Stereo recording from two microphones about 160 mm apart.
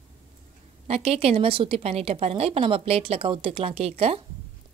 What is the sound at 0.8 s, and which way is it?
A woman's voice, 40° right (ahead or behind).